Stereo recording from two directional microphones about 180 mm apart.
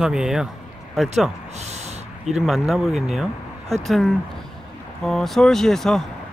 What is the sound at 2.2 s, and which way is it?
Speech, centre (ahead or behind).